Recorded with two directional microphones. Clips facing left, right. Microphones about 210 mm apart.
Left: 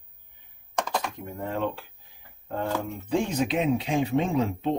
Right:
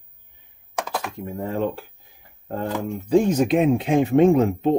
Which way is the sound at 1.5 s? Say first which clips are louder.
Right 4 dB; 40° right (ahead or behind).